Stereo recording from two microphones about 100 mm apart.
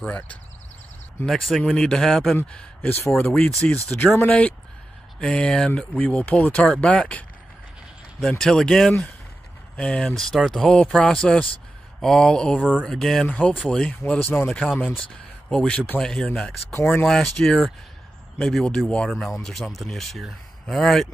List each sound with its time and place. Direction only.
0.0 s speech: 15° left (ahead or behind)
1.2 s speech: centre (ahead or behind)
2.5 s speech: 15° left (ahead or behind)
12.5 s speech: 10° right (ahead or behind)
12.8 s speech: 5° left (ahead or behind)
13.3 s speech: 15° left (ahead or behind)
16.7 s speech: 25° left (ahead or behind)
17.0 s speech: 5° left (ahead or behind)